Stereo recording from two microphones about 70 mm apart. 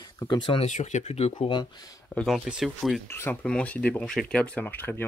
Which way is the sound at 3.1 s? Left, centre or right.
Left.